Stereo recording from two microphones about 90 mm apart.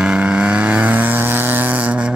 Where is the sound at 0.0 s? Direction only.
10° right (ahead or behind).